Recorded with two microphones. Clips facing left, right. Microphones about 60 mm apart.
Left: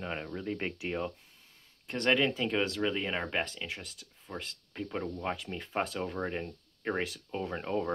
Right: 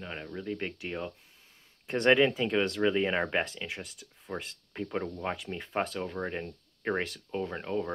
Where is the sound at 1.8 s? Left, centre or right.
Centre.